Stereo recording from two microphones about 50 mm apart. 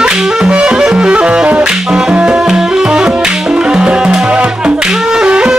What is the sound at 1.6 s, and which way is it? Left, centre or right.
Music, centre.